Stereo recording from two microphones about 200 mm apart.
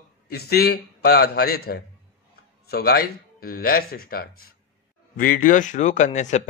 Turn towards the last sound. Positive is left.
turn(degrees=35)  # may be behind; listen again after turning